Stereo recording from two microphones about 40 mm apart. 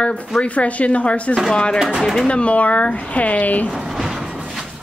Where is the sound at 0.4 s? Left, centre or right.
Left.